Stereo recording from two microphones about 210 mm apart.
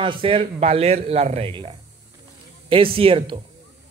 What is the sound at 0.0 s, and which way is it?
Speech, 25° right (ahead or behind).